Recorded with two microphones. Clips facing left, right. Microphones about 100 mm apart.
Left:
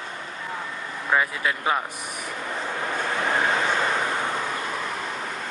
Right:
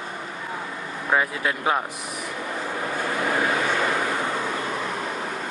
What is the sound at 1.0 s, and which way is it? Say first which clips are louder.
Speech: even; 5° right (ahead or behind).